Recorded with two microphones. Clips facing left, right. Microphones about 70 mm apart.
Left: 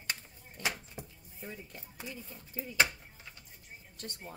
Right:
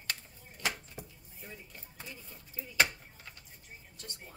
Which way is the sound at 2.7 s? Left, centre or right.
Centre.